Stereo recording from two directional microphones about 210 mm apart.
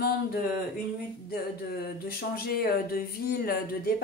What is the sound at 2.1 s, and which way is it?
Speech, 45° left (ahead or behind).